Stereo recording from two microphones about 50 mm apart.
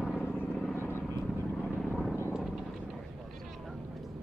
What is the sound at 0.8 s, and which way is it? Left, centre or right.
Vehicle, left.